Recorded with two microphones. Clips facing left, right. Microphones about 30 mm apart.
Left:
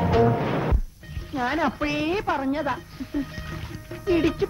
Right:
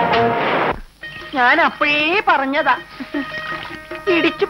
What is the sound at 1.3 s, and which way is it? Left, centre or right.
A woman's voice, right.